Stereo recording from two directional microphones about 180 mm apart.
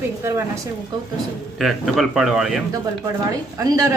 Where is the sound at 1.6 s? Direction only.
Centre (ahead or behind).